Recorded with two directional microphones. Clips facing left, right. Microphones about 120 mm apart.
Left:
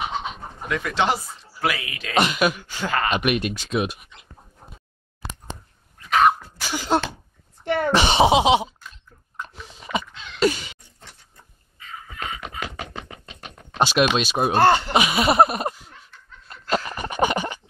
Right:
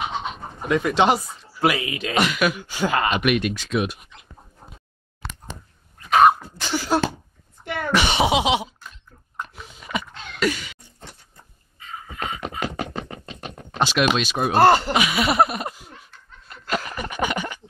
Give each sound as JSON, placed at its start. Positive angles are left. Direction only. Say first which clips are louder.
{"t": 0.2, "sound": "bird", "louder": "right 1 dB", "side_deg": 0}
{"t": 0.7, "sound": "speech", "louder": "right 4 dB", "side_deg": -25}
{"t": 2.1, "sound": "speech", "louder": "left 1 dB", "side_deg": 25}
{"t": 2.6, "sound": "speech", "louder": "right 3 dB", "side_deg": -10}
{"t": 3.2, "sound": "speech", "louder": "right 2 dB", "side_deg": 30}
{"t": 5.2, "sound": "a sound", "louder": "left 1 dB", "side_deg": 15}
{"t": 6.0, "sound": "cough", "louder": "right 3 dB", "side_deg": -35}
{"t": 6.6, "sound": "sneeze", "louder": "even", "side_deg": 15}
{"t": 7.6, "sound": "speech", "louder": "left 3 dB", "side_deg": 35}
{"t": 10.1, "sound": "a sound", "louder": "right 2 dB", "side_deg": -50}
{"t": 10.4, "sound": "cough", "louder": "left 3 dB", "side_deg": 25}
{"t": 11.8, "sound": "a sound", "louder": "right 2 dB", "side_deg": -30}
{"t": 14.1, "sound": "speech", "louder": "even", "side_deg": 25}
{"t": 16.7, "sound": "a sound", "louder": "left 2 dB", "side_deg": 30}